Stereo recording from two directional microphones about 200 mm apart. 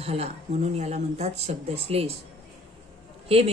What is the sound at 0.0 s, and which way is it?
A woman's voice, 30° right (ahead or behind).